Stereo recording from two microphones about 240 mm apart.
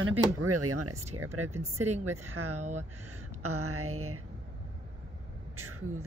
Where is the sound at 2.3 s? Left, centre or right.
Right.